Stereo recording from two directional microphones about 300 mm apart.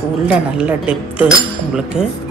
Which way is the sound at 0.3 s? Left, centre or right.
Centre.